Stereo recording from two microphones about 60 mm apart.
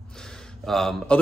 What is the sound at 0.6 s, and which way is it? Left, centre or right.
Speech, centre.